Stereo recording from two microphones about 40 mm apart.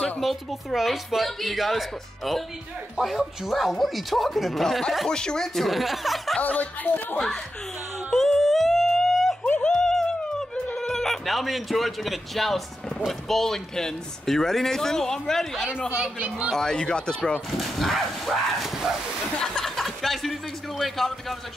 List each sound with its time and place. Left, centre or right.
0.2 s a woman's voice: centre
5.0 s a man's voice: centre
5.7 s a woman's voice: centre
6.4 s speech: left
8.1 s yodeling: centre
9.6 s music: centre
13.3 s a man's voice: centre
16.0 s a man's voice: right
16.4 s speech: centre
17.5 s speech: centre
19.6 s speech: centre